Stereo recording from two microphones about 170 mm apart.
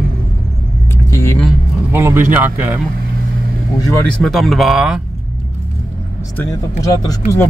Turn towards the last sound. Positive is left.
turn(degrees=20)  # may be behind; listen again after turning